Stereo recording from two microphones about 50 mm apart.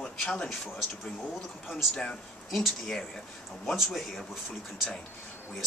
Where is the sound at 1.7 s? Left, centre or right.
Centre.